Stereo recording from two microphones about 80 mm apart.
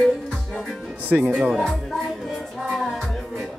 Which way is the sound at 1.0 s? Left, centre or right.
Right.